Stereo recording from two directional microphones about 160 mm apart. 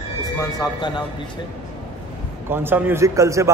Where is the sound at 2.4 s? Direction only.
15° right (ahead or behind).